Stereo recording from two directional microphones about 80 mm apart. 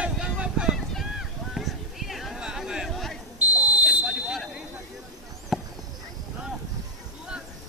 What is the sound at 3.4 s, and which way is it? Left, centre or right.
Buzzer, centre.